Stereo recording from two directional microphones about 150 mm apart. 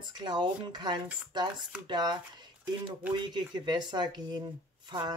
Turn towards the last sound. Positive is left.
turn(degrees=-25)  # may be behind; listen again after turning